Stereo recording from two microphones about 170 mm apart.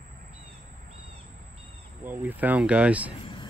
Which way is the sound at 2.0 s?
10° right (ahead or behind).